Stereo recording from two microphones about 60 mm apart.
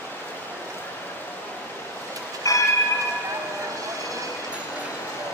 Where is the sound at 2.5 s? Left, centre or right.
Left.